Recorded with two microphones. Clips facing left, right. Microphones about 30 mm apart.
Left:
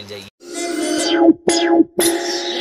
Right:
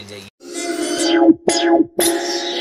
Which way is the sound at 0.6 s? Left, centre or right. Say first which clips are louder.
Left 1 dB; centre.